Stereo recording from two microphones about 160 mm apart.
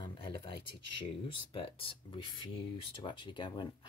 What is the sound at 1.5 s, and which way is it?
Speech, 35° left (ahead or behind).